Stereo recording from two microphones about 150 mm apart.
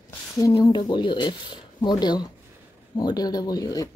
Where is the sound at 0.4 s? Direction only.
20° left (ahead or behind).